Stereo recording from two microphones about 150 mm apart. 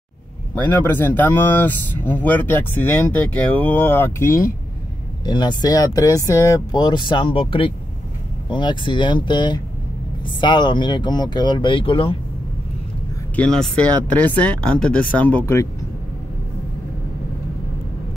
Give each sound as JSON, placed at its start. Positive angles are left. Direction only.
{"t": 0.6, "sound": "speech", "side_deg": 10}
{"t": 5.2, "sound": "speech", "side_deg": 30}
{"t": 13.4, "sound": "speech", "side_deg": 5}